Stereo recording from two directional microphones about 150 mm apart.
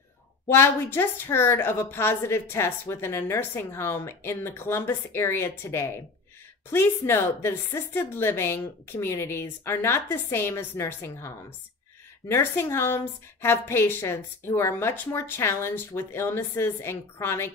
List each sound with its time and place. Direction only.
0.6 s a woman's voice: 15° left (ahead or behind)